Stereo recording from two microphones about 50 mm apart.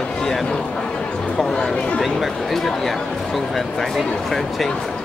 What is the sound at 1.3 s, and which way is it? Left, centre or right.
Speech, centre.